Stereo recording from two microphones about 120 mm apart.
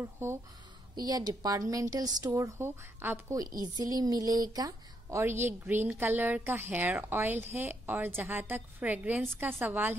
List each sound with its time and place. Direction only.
0.0 s speech: 20° right (ahead or behind)
0.9 s a woman's voice: 35° right (ahead or behind); by 3.3 s 20° right (ahead or behind)
3.3 s a woman's voice: 30° right (ahead or behind); by 9.9 s 15° right (ahead or behind)